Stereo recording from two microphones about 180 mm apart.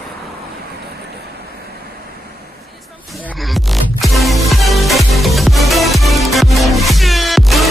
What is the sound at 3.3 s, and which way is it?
Music, centre (ahead or behind).